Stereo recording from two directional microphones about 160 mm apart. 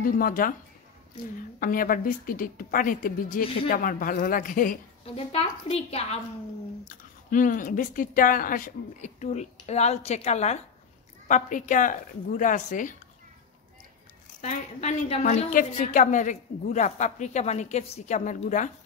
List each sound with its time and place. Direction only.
0.0 s a woman's voice: 60° left (ahead or behind)
1.6 s a woman's voice: 60° left (ahead or behind)
5.1 s a woman's voice: 40° left (ahead or behind)
7.2 s a woman's voice: 55° left (ahead or behind)
14.4 s a woman's voice: 50° left (ahead or behind)